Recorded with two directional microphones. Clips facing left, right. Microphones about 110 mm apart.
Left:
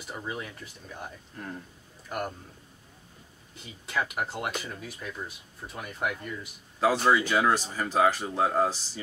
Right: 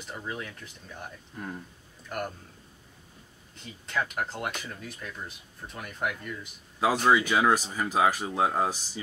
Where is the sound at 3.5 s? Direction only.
5° left (ahead or behind).